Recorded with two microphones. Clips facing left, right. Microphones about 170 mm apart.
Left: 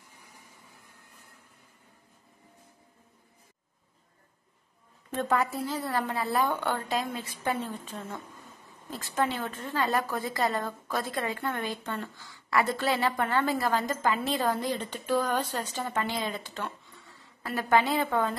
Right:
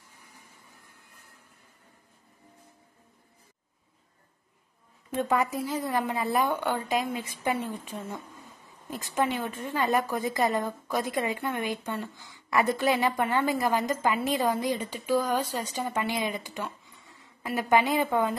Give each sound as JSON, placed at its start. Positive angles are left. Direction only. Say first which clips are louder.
{"t": 5.1, "sound": "a woman's voice", "louder": "right 1 dB", "side_deg": -15}